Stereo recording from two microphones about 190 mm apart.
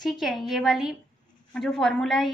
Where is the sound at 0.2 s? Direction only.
Centre (ahead or behind).